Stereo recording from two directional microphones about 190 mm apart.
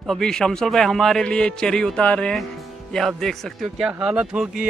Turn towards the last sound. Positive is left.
turn(degrees=-5)  # may be behind; listen again after turning